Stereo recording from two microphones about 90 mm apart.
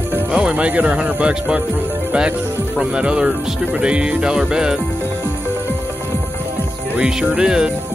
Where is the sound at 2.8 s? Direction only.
10° right (ahead or behind).